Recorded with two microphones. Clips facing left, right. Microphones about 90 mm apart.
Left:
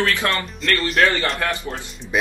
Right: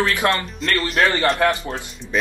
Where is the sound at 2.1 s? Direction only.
10° left (ahead or behind).